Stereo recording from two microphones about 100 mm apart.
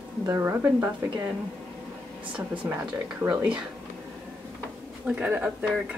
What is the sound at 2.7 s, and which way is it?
Speech, 15° right (ahead or behind).